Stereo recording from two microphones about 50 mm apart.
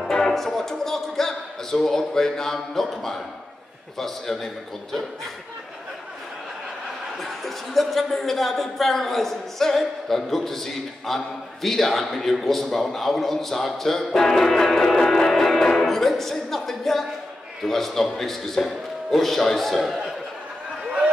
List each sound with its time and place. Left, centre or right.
0.0 s speech: centre
7.2 s a man's voice: centre